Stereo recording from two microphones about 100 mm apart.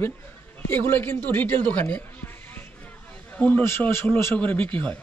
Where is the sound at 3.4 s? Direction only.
15° left (ahead or behind).